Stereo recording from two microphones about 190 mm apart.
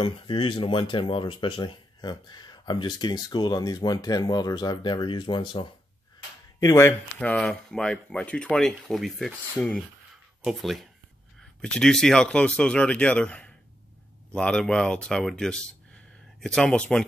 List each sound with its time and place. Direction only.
0.0 s speech: 25° left (ahead or behind)
6.6 s speech: 15° left (ahead or behind)